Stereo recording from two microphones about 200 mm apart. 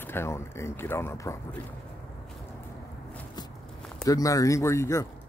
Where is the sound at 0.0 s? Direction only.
10° left (ahead or behind).